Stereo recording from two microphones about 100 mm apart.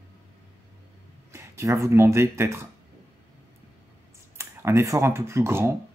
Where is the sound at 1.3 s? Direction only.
30° right (ahead or behind).